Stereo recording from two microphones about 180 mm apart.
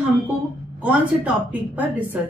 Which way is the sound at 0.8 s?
10° right (ahead or behind).